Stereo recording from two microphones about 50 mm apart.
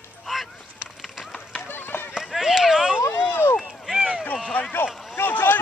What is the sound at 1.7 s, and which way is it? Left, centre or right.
Run, left.